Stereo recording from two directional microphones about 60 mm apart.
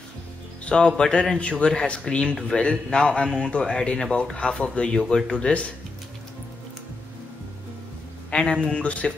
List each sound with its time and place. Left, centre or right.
0.7 s speech: centre
8.3 s a man's voice: centre